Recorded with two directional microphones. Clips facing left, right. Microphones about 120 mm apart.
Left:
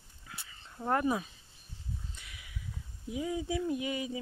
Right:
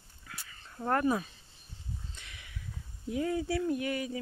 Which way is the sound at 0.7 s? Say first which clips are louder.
Right 1 dB; 10° left (ahead or behind).